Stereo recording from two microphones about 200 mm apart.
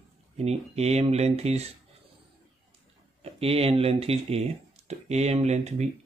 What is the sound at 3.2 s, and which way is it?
Speech, 30° right (ahead or behind).